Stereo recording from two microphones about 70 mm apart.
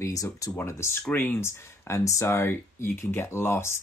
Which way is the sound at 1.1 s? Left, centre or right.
Left.